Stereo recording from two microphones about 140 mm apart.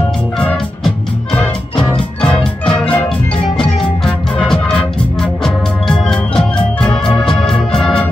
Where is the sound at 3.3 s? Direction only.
40° left (ahead or behind).